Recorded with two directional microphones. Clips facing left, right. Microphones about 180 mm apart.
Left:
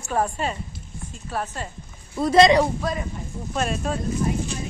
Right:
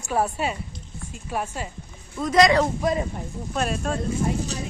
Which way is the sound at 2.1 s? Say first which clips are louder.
Left 3 dB; 30° left (ahead or behind).